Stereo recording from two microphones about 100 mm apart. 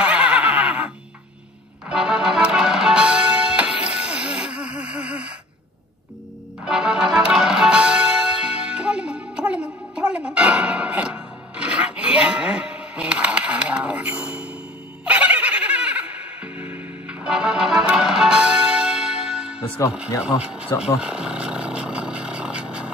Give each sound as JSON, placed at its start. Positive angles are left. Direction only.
{"t": 0.0, "sound": "neigh", "side_deg": -10}
{"t": 1.9, "sound": "music", "side_deg": -5}
{"t": 6.6, "sound": "music", "side_deg": -5}
{"t": 20.1, "sound": "speech", "side_deg": 30}
{"t": 21.0, "sound": "vehicle", "side_deg": -10}